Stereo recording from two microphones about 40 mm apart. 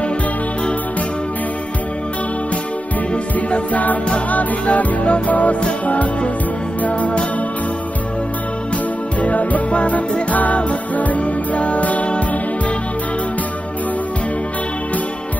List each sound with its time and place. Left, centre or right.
3.3 s music: left
9.2 s music: left